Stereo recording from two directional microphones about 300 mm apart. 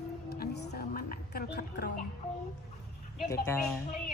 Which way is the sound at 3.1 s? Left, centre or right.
Centre.